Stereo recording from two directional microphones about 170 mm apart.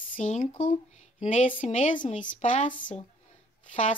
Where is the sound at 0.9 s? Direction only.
45° left (ahead or behind).